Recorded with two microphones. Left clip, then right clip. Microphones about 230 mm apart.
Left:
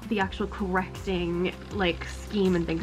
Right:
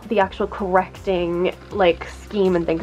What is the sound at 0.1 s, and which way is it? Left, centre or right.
A woman's voice, centre.